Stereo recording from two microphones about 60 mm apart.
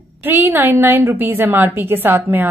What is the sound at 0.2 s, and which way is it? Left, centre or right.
A woman's voice, right.